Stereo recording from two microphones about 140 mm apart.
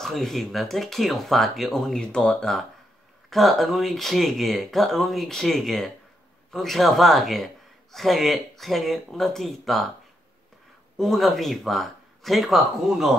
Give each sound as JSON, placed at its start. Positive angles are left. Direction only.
{"t": 0.0, "sound": "speech", "side_deg": 0}
{"t": 11.0, "sound": "speech", "side_deg": 0}